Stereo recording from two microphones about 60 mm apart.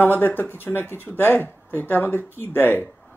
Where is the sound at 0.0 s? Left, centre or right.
Left.